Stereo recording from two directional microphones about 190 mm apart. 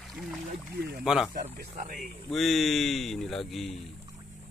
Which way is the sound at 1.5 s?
45° right (ahead or behind).